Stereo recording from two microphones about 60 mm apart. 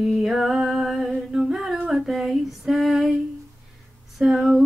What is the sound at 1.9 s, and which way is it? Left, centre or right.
Female singing, centre.